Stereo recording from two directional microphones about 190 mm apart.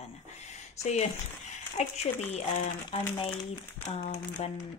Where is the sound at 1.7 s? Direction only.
35° left (ahead or behind).